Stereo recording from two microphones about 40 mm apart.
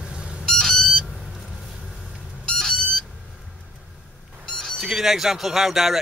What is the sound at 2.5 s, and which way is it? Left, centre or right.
Vehicle, centre.